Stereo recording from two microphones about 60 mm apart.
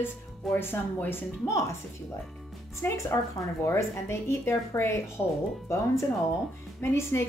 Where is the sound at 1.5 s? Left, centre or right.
Left.